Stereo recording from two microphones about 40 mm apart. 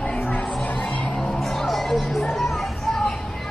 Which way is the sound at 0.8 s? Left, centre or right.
Left.